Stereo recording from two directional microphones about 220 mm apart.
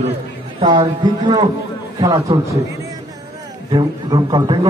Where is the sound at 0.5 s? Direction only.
25° right (ahead or behind).